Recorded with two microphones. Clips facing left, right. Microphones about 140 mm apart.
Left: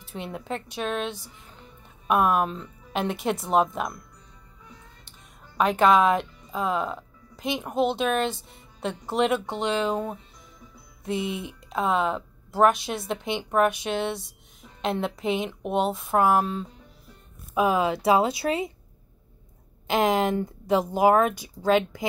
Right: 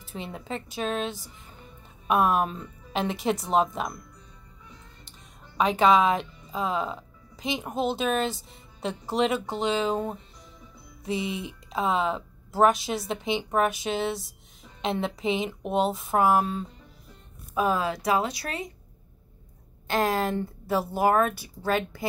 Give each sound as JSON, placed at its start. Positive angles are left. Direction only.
{"t": 0.0, "sound": "a woman's voice", "side_deg": 0}
{"t": 5.6, "sound": "speech", "side_deg": 0}
{"t": 17.6, "sound": "speech", "side_deg": 10}
{"t": 17.8, "sound": "speech", "side_deg": 25}
{"t": 19.9, "sound": "speech", "side_deg": 20}